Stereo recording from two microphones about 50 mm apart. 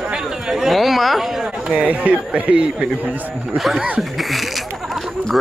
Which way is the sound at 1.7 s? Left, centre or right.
Right.